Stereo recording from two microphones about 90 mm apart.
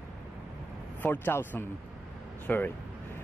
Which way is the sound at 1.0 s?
20° left (ahead or behind).